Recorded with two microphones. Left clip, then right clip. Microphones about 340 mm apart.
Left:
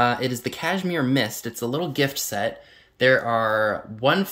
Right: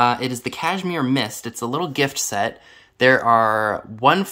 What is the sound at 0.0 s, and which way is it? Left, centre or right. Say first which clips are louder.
Speech: right 3 dB; centre.